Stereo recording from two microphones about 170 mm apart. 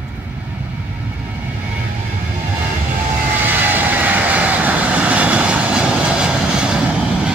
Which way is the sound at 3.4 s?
10° right (ahead or behind).